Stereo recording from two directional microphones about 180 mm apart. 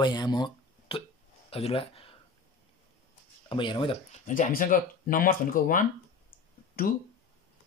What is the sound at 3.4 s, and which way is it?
Speech, 25° left (ahead or behind).